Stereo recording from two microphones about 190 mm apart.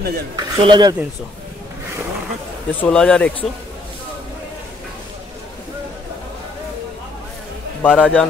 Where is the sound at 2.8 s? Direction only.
5° left (ahead or behind).